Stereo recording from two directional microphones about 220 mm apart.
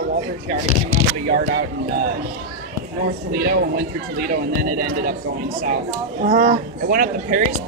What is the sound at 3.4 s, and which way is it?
Speech, 45° right (ahead or behind).